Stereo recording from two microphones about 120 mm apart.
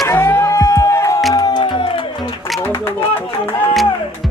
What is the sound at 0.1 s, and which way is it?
Music, 20° left (ahead or behind).